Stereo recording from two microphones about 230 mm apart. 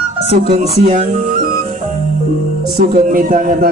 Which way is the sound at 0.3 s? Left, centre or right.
Right.